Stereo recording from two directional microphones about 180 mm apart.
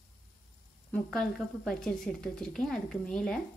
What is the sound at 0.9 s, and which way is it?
A woman's voice, 5° left (ahead or behind).